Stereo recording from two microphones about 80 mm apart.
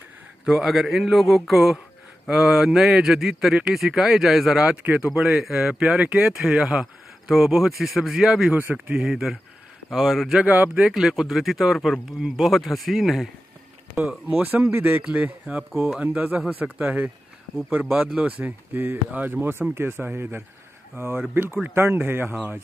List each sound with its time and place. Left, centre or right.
0.5 s speech: centre
5.1 s speech: centre
8.5 s speech: right
8.8 s speech: centre
10.4 s speech: centre
10.9 s speech: centre
13.9 s speech: right
15.4 s speech: centre
16.0 s speech: centre